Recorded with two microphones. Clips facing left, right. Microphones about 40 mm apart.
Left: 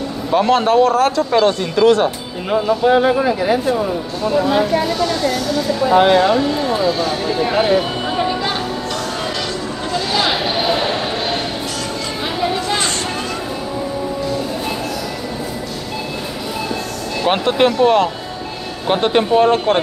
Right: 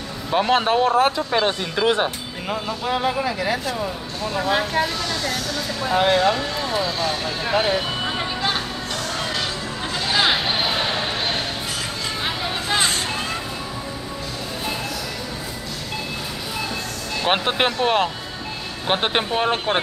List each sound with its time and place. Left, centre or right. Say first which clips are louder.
0.5 s speech: left 5 dB; centre
2.8 s speech: left 8 dB; centre
4.2 s speech: left 8 dB; centre
4.5 s speech: left 5 dB; centre
10.1 s a sound: left 1 dB; centre
12.6 s a sound: left 2 dB; centre
17.3 s speech: left 6 dB; centre